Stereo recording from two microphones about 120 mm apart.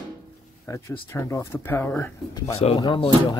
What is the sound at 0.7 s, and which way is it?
Speech, 25° left (ahead or behind).